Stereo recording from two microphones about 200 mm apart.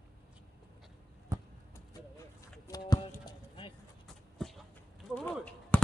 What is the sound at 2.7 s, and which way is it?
Chop, 20° left (ahead or behind).